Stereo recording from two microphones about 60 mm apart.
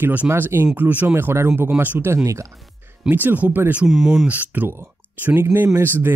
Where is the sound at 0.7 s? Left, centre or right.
Right.